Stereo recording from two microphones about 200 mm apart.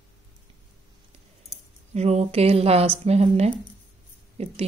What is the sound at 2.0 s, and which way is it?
Speech, 35° right (ahead or behind).